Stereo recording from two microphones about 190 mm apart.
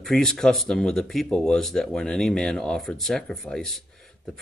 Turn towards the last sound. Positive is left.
turn(degrees=0)  # may be behind; listen again after turning